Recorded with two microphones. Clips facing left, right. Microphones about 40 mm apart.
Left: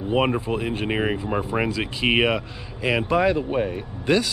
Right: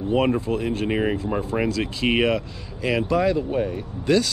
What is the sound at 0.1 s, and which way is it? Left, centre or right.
Speech, centre.